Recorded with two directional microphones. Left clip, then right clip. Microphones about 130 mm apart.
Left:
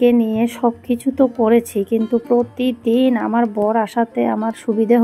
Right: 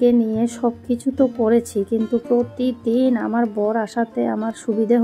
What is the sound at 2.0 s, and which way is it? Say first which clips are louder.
A woman's voice: left 3 dB; centre (ahead or behind).